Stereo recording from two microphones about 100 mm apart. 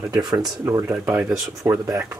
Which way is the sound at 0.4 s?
30° right (ahead or behind).